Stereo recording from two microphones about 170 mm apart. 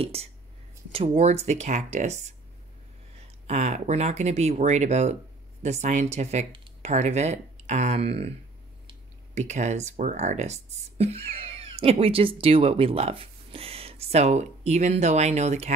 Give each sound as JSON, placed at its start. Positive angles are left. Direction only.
{"t": 0.0, "sound": "speech", "side_deg": -35}
{"t": 3.4, "sound": "speech", "side_deg": -40}